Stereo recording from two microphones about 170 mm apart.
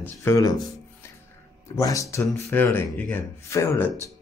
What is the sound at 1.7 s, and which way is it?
Speech, 20° left (ahead or behind).